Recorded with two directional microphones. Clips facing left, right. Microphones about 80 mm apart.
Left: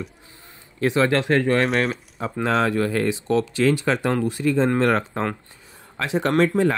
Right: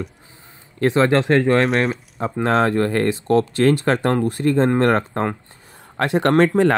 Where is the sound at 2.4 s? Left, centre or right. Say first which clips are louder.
Right 3 dB; right.